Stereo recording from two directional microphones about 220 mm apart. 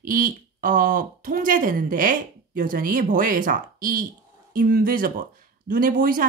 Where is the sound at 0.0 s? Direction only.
40° right (ahead or behind).